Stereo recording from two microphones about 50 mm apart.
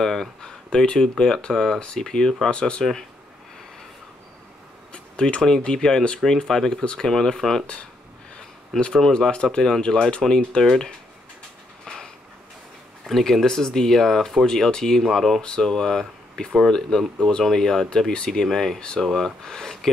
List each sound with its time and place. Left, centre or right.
0.0 s speech: centre
4.9 s a sound: centre
5.4 s speech: centre
8.7 s speech: centre
11.8 s a sound: centre
13.0 s speech: centre
15.4 s speech: centre